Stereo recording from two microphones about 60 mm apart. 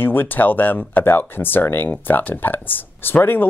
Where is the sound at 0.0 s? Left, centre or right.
Left.